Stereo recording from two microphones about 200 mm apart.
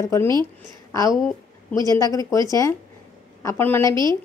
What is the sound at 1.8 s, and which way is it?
A woman's voice, 15° left (ahead or behind).